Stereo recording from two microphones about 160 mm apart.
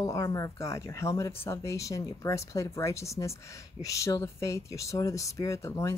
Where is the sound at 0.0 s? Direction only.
20° left (ahead or behind).